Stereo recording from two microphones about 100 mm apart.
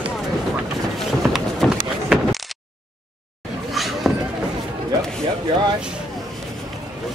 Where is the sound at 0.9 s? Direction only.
Centre (ahead or behind).